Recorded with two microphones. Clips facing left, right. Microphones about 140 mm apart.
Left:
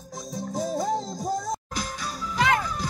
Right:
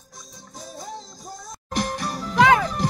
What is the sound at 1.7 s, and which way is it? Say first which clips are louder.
Music: right 6 dB; 70° right (ahead or behind).